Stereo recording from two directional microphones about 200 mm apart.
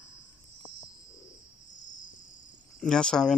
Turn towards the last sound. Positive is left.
turn(degrees=5)  # may be behind; listen again after turning